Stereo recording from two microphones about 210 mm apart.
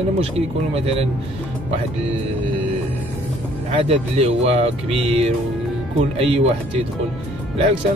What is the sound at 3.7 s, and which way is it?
Speech, 30° right (ahead or behind).